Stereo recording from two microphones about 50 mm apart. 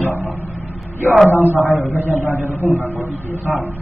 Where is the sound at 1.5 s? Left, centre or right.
Left.